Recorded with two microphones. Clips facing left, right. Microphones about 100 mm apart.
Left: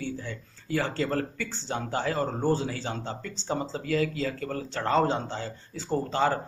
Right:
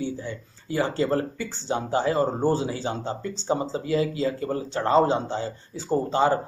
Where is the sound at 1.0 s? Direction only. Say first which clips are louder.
Right 4 dB; 25° right (ahead or behind).